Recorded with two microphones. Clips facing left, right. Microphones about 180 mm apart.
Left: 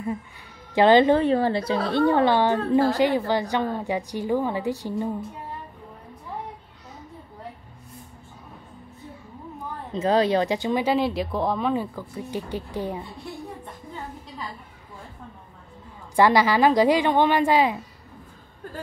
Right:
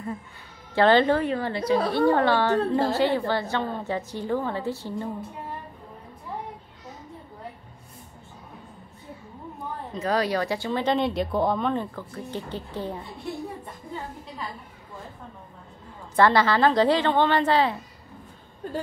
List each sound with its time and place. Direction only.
0.7 s a woman's voice: 15° left (ahead or behind)
1.3 s a woman's voice: 30° left (ahead or behind); by 5.1 s 15° left (ahead or behind)
9.9 s a woman's voice: 25° left (ahead or behind)
16.2 s a woman's voice: 10° left (ahead or behind)